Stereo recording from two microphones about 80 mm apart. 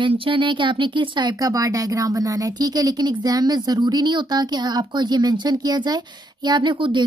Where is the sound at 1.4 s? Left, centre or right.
Right.